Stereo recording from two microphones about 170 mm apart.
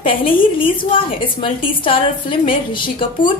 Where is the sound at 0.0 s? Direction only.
30° left (ahead or behind).